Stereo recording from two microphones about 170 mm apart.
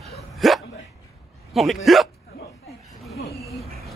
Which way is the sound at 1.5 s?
Centre (ahead or behind).